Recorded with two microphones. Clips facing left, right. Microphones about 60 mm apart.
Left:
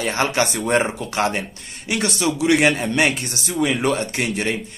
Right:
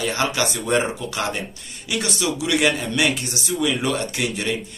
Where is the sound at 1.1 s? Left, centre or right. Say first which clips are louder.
Left 4 dB; left.